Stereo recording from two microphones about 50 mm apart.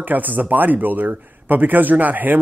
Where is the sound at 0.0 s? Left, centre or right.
Right.